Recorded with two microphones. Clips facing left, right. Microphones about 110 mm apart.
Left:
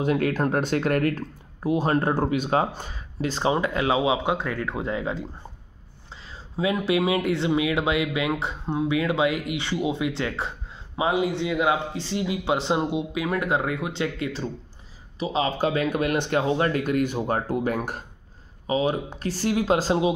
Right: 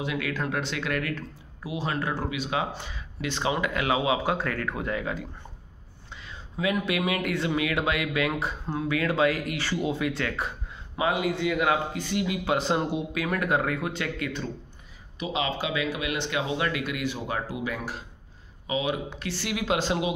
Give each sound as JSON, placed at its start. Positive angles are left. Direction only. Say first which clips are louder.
{"t": 0.0, "sound": "speech", "louder": "left 7 dB", "side_deg": 45}
{"t": 6.2, "sound": "a sound", "louder": "left 3 dB", "side_deg": 30}
{"t": 6.9, "sound": "speech", "louder": "left 5 dB", "side_deg": 25}